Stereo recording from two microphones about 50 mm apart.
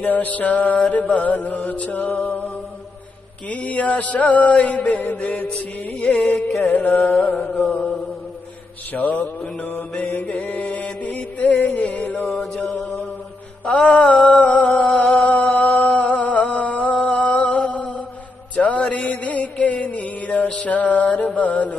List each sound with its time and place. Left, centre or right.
0.0 s music: left
3.4 s mantra: left
6.8 s music: left
7.5 s mantra: centre
8.9 s music: left
10.3 s mantra: left
11.1 s music: left
13.8 s mantra: left
14.5 s music: left
15.5 s a sound: left
17.0 s music: left
20.6 s mantra: left
21.4 s a sound: left